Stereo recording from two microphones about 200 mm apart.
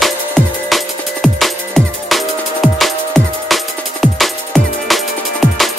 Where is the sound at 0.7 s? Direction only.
Centre (ahead or behind).